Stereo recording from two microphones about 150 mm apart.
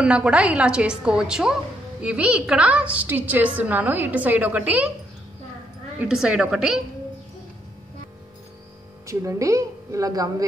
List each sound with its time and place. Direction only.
0.0 s a woman's voice: 5° right (ahead or behind)
5.9 s a woman's voice: 5° right (ahead or behind)
9.0 s a woman's voice: 20° right (ahead or behind)